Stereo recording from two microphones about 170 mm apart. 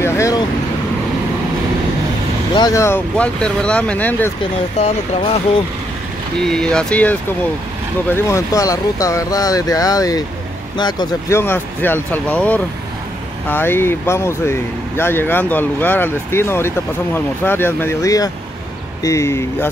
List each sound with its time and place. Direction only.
0.0 s vehicle: 15° left (ahead or behind)
2.5 s speech: 20° left (ahead or behind)
4.7 s speech: 35° left (ahead or behind)
6.4 s speech: 5° left (ahead or behind)